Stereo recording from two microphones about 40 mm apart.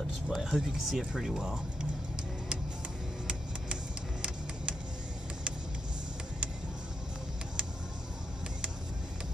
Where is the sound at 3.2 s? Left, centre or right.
Right.